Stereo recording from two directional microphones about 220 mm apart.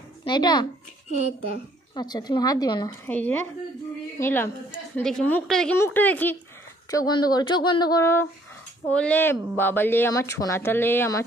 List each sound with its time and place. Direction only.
0.2 s a child's voice: 20° left (ahead or behind)
2.0 s speech: 20° left (ahead or behind)